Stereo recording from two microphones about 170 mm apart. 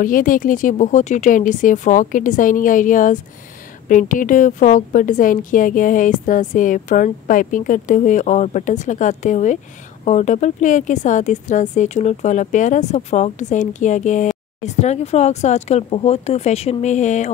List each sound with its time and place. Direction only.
0.0 s speech: 55° left (ahead or behind)